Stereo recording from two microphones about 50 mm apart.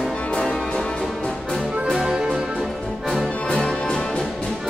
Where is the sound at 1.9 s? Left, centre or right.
Centre.